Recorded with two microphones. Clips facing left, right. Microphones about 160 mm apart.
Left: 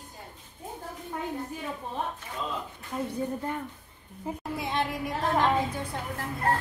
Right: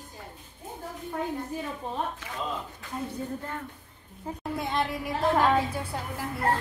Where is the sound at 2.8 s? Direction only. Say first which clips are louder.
Left 2 dB; 90° right.